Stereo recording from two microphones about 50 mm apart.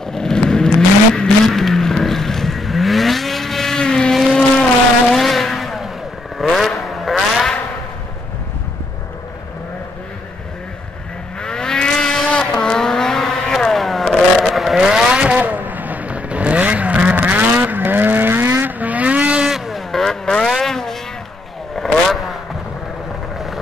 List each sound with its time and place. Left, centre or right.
0.1 s vehicle: centre
4.1 s vehicle: centre
11.4 s vehicle: centre
15.4 s vehicle: right
18.9 s vehicle: right
19.4 s vehicle: centre
19.9 s vehicle: centre
20.4 s a sound: centre
21.7 s vehicle: centre